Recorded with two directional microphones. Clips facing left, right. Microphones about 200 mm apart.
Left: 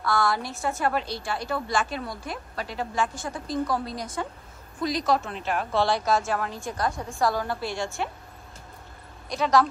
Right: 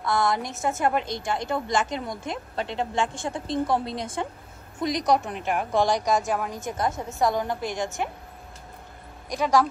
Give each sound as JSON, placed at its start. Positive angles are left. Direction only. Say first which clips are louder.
{"t": 0.0, "sound": "a woman's voice", "louder": "right 1 dB", "side_deg": -20}
{"t": 9.3, "sound": "a woman's voice", "louder": "even", "side_deg": -10}